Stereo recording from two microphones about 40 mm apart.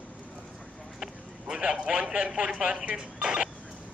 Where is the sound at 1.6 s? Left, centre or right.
Right.